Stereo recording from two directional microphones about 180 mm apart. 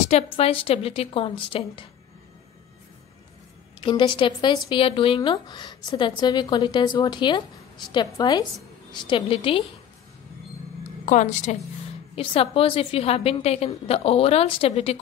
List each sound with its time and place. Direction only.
0.1 s a woman's voice: 30° left (ahead or behind)
3.8 s speech: 25° left (ahead or behind)
11.1 s a woman's voice: 40° left (ahead or behind)
12.2 s a woman's voice: 30° left (ahead or behind)